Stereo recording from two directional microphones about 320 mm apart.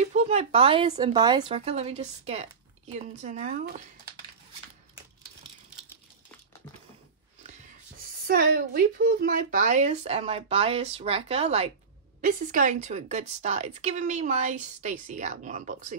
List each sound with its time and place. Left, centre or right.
0.1 s speech: centre
8.3 s speech: right